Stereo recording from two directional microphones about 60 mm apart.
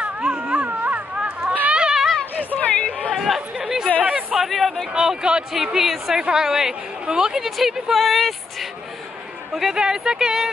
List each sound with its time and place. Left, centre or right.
0.0 s a sound: centre
2.5 s chatter: left
3.2 s chatter: centre
4.0 s chatter: right
4.4 s a sound: centre
4.9 s a woman's voice: centre